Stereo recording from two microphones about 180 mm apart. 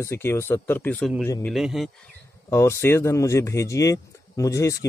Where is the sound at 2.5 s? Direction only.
15° left (ahead or behind).